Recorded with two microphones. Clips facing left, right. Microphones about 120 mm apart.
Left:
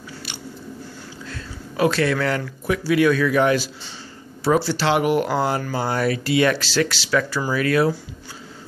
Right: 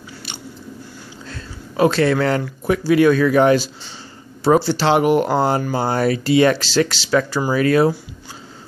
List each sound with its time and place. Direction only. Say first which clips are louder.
1.8 s speech: right 4 dB; 30° right (ahead or behind)